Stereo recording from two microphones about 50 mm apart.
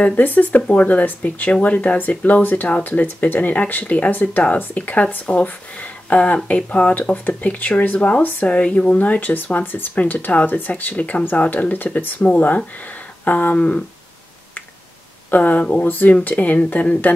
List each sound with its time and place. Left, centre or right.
0.0 s speech: left
12.3 s speech: left
15.3 s speech: left